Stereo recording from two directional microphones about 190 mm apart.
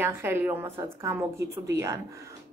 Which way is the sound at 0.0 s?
10° right (ahead or behind).